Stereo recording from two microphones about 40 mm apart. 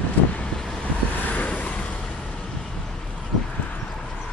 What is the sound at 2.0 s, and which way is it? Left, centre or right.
Vehicle, centre.